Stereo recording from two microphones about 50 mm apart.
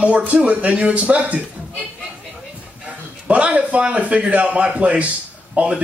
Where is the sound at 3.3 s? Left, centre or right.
Right.